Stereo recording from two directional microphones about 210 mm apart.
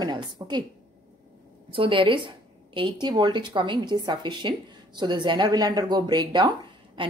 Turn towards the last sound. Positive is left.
turn(degrees=-20)  # may be behind; listen again after turning